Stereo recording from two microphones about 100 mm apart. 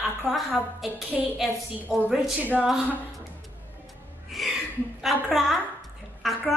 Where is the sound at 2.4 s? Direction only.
15° right (ahead or behind).